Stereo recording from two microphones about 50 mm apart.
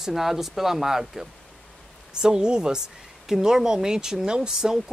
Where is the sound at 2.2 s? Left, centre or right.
Centre.